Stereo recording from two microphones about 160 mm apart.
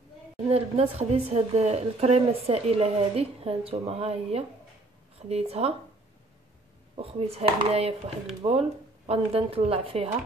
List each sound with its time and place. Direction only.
0.5 s speech: 40° right (ahead or behind)
7.0 s speech: 40° right (ahead or behind)